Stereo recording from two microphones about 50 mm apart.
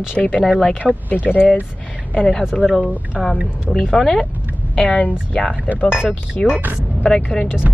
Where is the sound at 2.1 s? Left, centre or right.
Centre.